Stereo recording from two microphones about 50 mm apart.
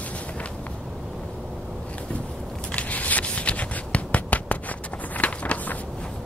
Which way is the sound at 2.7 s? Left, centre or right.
Left.